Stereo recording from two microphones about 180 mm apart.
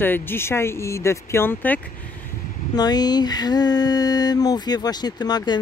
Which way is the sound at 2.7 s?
20° left (ahead or behind).